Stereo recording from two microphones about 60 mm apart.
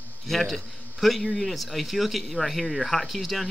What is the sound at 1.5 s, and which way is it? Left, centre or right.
Speech, centre.